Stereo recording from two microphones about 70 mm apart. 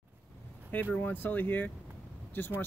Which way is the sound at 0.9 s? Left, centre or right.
Left.